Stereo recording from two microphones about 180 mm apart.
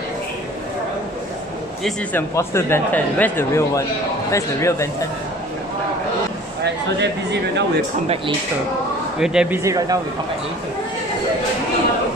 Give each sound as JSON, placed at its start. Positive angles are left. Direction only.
{"t": 1.8, "sound": "speech", "side_deg": 0}
{"t": 2.3, "sound": "speech", "side_deg": 15}
{"t": 6.6, "sound": "speech", "side_deg": -75}
{"t": 9.2, "sound": "speech", "side_deg": -5}
{"t": 9.6, "sound": "speech", "side_deg": -20}